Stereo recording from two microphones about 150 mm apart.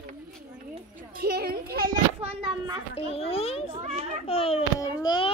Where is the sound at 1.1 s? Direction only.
90° right.